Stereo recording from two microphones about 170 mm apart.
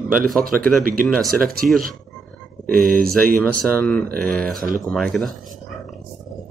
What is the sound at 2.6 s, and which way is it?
Speech, 55° right (ahead or behind).